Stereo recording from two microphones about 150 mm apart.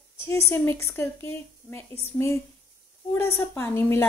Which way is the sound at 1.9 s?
40° right (ahead or behind).